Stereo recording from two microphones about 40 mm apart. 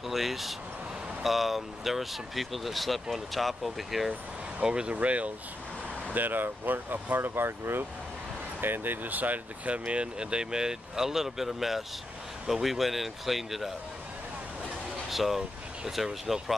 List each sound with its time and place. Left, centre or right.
0.0 s speech: centre
4.6 s speech: right
4.9 s speech: right
6.1 s speech: right
8.5 s speech: right
9.8 s speech: right; by 13.7 s centre
15.0 s speech: centre